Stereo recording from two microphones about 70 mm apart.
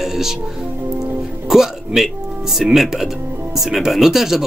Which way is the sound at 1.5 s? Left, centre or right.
Centre.